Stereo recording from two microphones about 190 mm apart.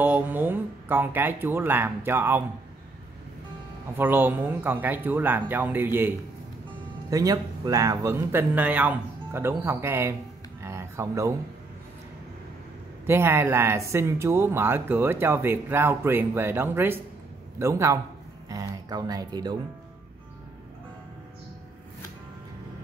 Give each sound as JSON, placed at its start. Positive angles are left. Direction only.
{"t": 0.0, "sound": "speech", "side_deg": -10}
{"t": 4.0, "sound": "speech", "side_deg": -10}
{"t": 10.6, "sound": "a sound", "side_deg": -15}
{"t": 13.0, "sound": "speech", "side_deg": -10}